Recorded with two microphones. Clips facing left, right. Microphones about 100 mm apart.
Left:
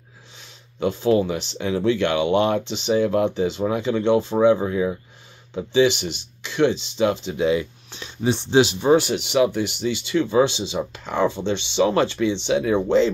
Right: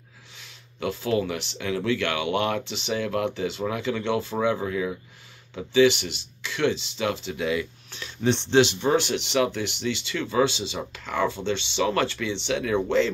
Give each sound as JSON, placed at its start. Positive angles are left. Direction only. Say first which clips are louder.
{"t": 0.7, "sound": "speech", "louder": "left 6 dB", "side_deg": 20}
{"t": 8.3, "sound": "speech", "louder": "left 2 dB", "side_deg": 10}